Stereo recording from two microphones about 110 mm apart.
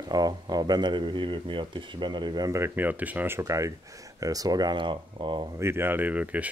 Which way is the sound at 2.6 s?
15° right (ahead or behind).